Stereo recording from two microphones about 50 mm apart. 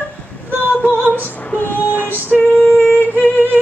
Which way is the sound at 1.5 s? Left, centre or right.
Left.